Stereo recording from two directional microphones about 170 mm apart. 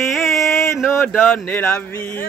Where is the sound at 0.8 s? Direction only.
15° left (ahead or behind).